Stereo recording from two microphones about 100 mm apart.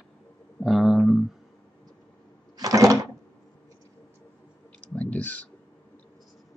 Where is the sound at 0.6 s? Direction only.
Centre (ahead or behind).